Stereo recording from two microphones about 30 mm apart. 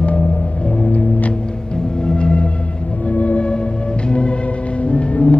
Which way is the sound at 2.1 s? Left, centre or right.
Left.